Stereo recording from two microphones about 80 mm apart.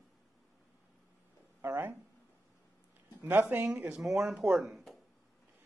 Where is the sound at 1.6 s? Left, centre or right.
Right.